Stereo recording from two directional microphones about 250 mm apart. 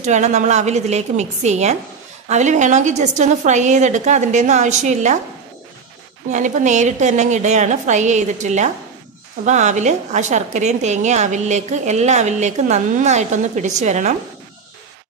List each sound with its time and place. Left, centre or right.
0.0 s a woman's voice: right
6.3 s a woman's voice: right